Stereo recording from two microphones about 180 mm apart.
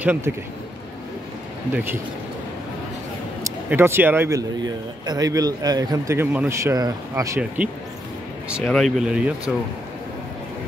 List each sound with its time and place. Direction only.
0.0 s a man's voice: 10° right (ahead or behind)
3.4 s a man's voice: 15° right (ahead or behind)